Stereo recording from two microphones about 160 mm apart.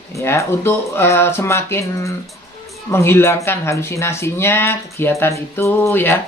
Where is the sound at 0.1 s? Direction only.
15° left (ahead or behind).